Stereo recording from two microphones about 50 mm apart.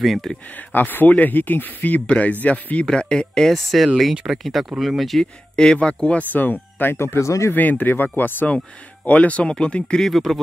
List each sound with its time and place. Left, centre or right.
0.0 s speech: centre
0.6 s speech: left
2.9 s speech: centre
5.2 s speech: centre
6.3 s speech: left
7.0 s speech: left
7.5 s speech: left
9.0 s speech: left
10.1 s speech: centre